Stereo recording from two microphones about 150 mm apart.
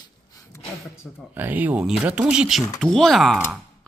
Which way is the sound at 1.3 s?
10° right (ahead or behind).